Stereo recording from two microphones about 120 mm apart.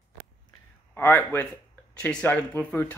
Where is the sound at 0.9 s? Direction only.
15° left (ahead or behind).